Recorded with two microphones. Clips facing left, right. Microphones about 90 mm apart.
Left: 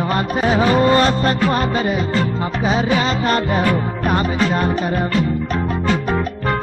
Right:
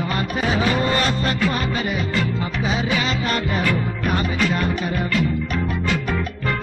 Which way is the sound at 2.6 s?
40° left (ahead or behind).